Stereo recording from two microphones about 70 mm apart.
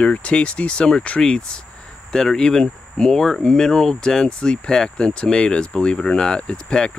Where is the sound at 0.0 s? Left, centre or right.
Centre.